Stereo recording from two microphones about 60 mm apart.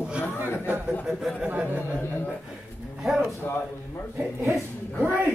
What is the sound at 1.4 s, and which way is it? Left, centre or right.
Speech, right.